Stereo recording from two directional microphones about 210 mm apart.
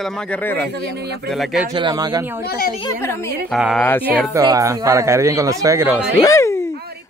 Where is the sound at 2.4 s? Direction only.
45° left (ahead or behind).